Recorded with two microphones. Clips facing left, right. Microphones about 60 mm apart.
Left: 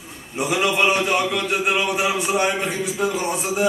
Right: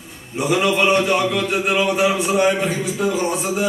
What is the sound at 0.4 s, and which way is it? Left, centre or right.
A man's voice, centre.